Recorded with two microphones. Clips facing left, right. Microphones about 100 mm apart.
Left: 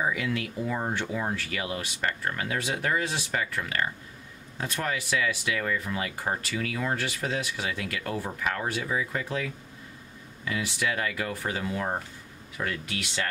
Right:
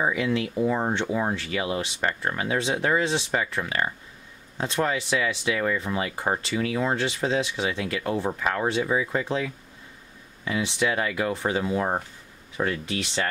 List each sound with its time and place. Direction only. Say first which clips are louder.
0.0 s speech: right 4 dB; 25° right (ahead or behind)